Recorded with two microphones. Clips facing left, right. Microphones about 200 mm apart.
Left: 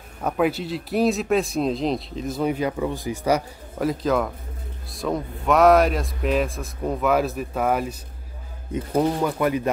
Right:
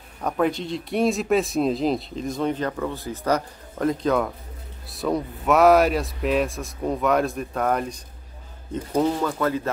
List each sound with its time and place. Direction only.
0.2 s speech: 5° left (ahead or behind)